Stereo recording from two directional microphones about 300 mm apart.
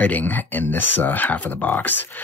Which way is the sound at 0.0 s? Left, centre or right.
Centre.